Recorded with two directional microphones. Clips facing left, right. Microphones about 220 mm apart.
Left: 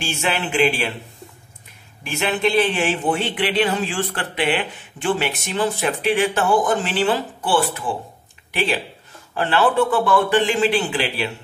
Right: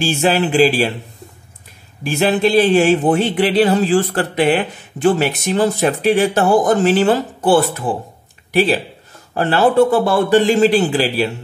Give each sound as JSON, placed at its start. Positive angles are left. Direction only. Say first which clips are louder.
{"t": 0.0, "sound": "speech", "louder": "right 8 dB", "side_deg": -35}
{"t": 2.0, "sound": "speech", "louder": "right 6 dB", "side_deg": -35}